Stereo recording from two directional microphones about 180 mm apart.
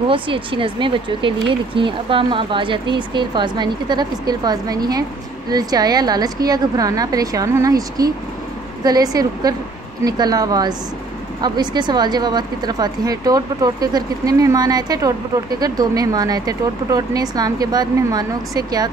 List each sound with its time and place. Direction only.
0.1 s speech: 30° right (ahead or behind)